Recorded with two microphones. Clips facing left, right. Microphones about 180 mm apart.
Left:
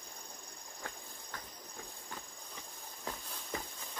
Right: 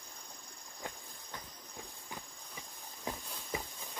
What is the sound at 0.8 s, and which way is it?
Insect, 15° right (ahead or behind).